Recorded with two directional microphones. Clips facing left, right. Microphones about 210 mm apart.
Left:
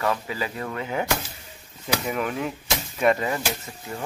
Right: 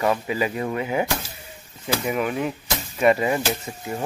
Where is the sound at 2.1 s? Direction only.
5° right (ahead or behind).